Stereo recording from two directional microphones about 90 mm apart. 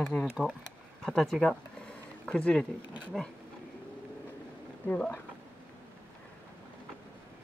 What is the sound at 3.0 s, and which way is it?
Speech, 10° left (ahead or behind).